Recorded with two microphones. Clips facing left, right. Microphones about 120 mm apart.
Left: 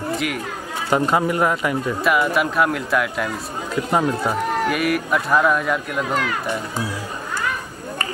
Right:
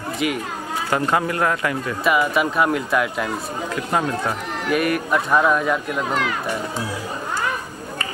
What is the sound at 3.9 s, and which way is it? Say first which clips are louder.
Speech: left 2 dB; 15° left (ahead or behind).